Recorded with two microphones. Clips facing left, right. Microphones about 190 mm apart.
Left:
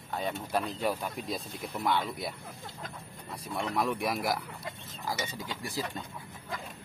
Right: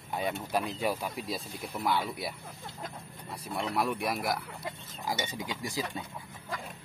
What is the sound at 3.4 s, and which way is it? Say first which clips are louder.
Speech: even; 5° right (ahead or behind).